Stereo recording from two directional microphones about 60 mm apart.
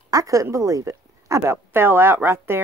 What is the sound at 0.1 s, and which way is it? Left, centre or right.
A woman's voice, right.